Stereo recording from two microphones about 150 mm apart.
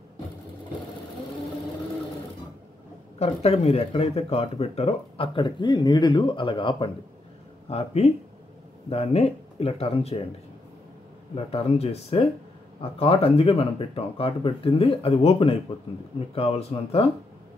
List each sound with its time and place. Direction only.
3.2 s speech: 45° left (ahead or behind)
7.7 s speech: 45° left (ahead or behind)
11.3 s speech: 40° left (ahead or behind)